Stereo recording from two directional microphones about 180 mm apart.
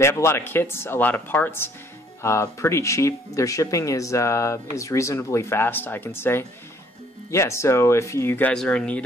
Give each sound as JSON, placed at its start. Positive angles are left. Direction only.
{"t": 0.0, "sound": "speech", "side_deg": 15}